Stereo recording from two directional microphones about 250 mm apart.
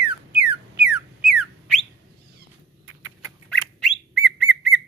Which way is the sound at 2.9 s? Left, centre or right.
Right.